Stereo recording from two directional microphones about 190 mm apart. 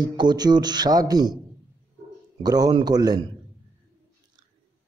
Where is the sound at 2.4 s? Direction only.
20° right (ahead or behind).